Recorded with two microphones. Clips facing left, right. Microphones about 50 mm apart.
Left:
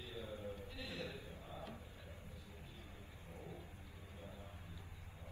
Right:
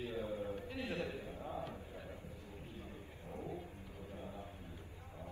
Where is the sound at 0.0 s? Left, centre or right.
Right.